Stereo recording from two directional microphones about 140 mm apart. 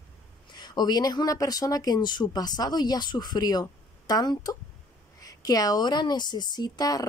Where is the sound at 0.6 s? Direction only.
30° left (ahead or behind).